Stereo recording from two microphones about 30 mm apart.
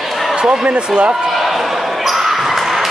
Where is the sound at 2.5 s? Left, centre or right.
Centre.